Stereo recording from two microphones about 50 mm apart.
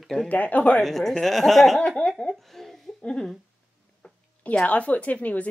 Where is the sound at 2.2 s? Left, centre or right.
Centre.